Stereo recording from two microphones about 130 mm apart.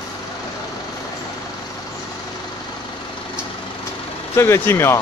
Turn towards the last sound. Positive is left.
turn(degrees=20)  # may be behind; listen again after turning